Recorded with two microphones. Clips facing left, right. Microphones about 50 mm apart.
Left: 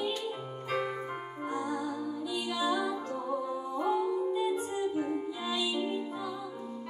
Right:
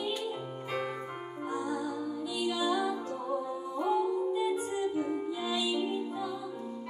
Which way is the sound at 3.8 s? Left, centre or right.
Left.